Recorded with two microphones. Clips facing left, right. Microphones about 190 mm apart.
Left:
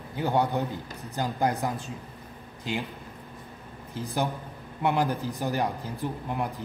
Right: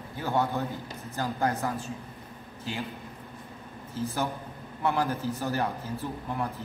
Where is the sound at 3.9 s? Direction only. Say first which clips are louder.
Left 1 dB; 15° left (ahead or behind).